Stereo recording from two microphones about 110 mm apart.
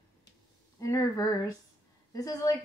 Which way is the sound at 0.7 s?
30° left (ahead or behind).